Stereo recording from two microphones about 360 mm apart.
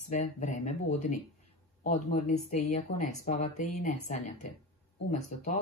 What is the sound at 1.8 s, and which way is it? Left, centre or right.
Speech, centre.